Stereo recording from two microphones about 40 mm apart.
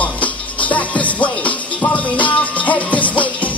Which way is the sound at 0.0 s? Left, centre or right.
Left.